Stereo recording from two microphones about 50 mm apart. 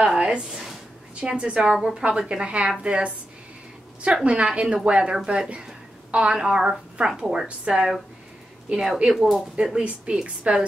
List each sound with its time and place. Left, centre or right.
0.2 s a woman's voice: centre
1.7 s speech: centre
2.0 s speech: centre
9.1 s speech: centre
9.6 s speech: centre
10.2 s speech: right